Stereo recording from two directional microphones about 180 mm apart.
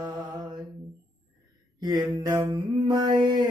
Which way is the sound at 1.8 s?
20° right (ahead or behind).